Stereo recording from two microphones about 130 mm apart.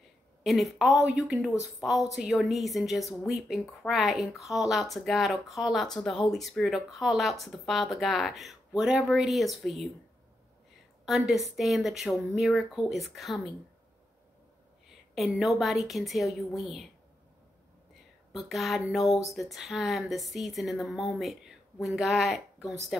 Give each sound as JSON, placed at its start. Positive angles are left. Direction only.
{"t": 0.4, "sound": "speech", "side_deg": 0}
{"t": 11.5, "sound": "speech", "side_deg": 0}
{"t": 15.1, "sound": "speech", "side_deg": 0}
{"t": 18.3, "sound": "speech", "side_deg": 0}